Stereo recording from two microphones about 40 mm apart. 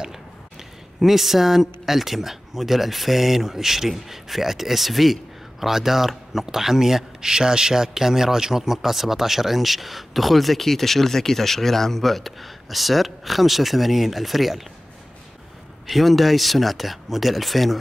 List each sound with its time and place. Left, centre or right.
0.9 s speech: centre
15.9 s speech: centre